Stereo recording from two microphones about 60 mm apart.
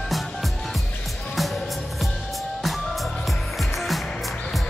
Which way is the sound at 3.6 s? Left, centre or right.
Centre.